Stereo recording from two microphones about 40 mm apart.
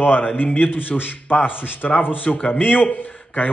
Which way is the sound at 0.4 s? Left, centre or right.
Left.